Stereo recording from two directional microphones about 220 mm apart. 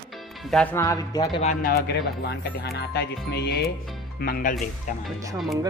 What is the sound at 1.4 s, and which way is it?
Speech, 40° left (ahead or behind).